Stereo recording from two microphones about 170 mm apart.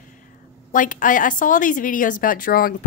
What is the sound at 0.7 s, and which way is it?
A woman's voice, 50° left (ahead or behind).